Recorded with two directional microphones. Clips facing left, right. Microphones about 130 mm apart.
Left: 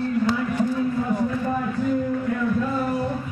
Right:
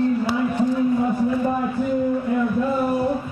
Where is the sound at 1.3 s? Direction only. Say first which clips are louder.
Right 3 dB; 15° right (ahead or behind).